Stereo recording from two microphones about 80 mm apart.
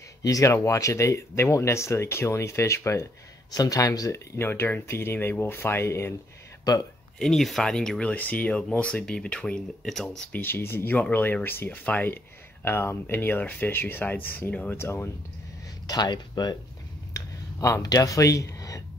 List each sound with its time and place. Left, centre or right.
0.2 s speech: left
3.5 s speech: left
4.4 s speech: left
6.6 s speech: left
7.2 s speech: centre
8.1 s speech: centre
10.3 s speech: left
15.9 s speech: left
17.1 s speech: left